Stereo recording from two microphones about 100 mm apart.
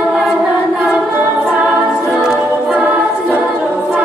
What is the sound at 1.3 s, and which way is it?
A capella, 10° right (ahead or behind).